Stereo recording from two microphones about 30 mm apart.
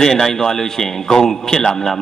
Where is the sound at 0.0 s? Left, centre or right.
Centre.